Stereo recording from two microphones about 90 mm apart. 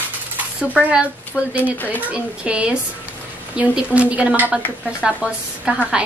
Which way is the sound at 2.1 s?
10° right (ahead or behind).